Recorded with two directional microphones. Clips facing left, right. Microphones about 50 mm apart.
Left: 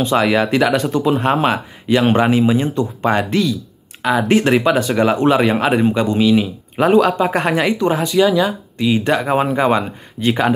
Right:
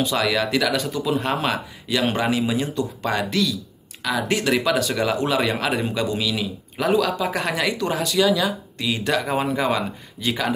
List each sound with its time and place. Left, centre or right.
0.0 s speech: left